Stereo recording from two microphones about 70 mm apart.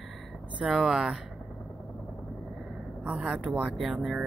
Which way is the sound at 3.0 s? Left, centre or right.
Centre.